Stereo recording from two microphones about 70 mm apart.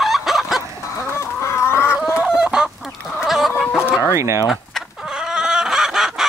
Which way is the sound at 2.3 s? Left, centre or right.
Centre.